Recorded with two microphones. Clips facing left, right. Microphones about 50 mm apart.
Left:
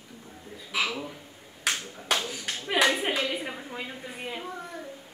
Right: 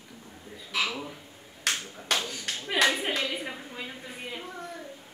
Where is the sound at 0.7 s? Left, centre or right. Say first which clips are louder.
Left 1 dB; centre.